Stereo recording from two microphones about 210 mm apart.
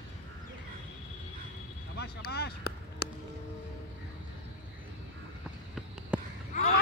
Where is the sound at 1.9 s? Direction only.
50° left (ahead or behind).